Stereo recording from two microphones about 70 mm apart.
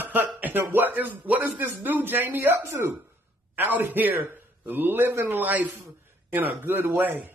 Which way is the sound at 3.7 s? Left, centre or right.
Right.